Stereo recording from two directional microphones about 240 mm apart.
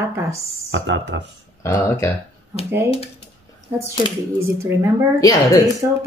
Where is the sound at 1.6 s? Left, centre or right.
Centre.